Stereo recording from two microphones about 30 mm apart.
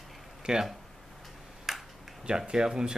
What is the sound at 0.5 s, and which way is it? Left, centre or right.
Speech, right.